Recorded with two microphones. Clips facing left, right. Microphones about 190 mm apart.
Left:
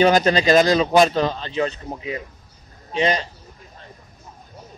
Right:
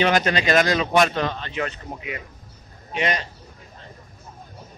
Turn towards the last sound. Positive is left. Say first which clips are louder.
# left 4 dB
turn(degrees=30)  # may be behind; listen again after turning